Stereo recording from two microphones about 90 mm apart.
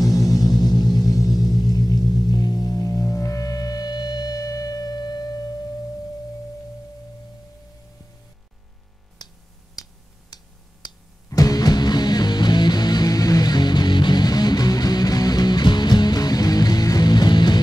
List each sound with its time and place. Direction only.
0.0 s music: 40° left (ahead or behind)
11.2 s music: 40° left (ahead or behind)